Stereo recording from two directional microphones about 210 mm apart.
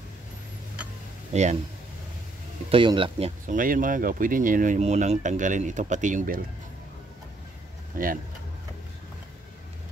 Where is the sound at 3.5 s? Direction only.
40° right (ahead or behind).